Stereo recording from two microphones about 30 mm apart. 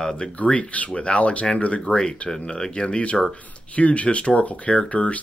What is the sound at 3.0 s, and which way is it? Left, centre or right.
Speech, left.